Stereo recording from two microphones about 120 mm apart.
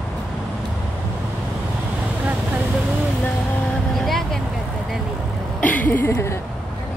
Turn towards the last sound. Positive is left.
turn(degrees=20)  # may be behind; listen again after turning